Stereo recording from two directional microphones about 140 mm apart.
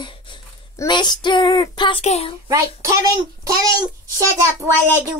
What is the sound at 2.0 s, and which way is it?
Speech, 50° left (ahead or behind).